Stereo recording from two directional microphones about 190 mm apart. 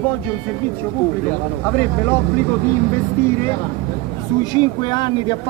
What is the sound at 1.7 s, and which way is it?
Speech, 10° left (ahead or behind).